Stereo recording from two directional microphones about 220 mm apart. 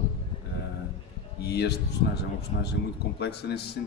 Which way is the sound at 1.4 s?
50° left (ahead or behind).